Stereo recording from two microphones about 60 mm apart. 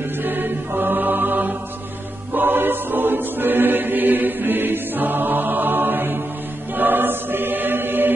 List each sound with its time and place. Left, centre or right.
0.2 s mantra: right
2.3 s choir: right
6.7 s chant: right